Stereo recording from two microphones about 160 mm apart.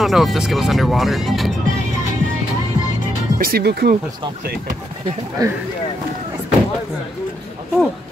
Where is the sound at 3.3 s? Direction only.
70° right (ahead or behind).